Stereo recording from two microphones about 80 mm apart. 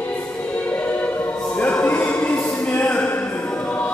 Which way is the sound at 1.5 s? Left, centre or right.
Centre.